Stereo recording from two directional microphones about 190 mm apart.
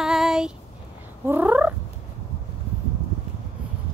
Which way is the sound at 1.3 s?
10° right (ahead or behind).